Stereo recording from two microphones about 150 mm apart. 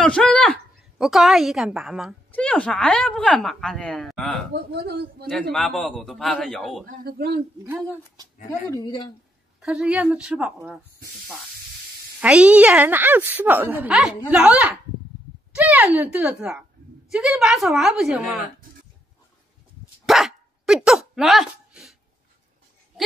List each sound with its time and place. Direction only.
0.0 s a woman's voice: 5° left (ahead or behind)
2.3 s a woman's voice: 10° left (ahead or behind)
4.6 s speech: 90° right
5.3 s a woman's voice: centre (ahead or behind)
6.9 s a man's voice: 85° right
7.6 s a woman's voice: 10° right (ahead or behind)
8.6 s a man's voice: 25° left (ahead or behind)
9.6 s a woman's voice: 5° right (ahead or behind)
12.2 s a woman's voice: 5° right (ahead or behind)
20.1 s dog: centre (ahead or behind)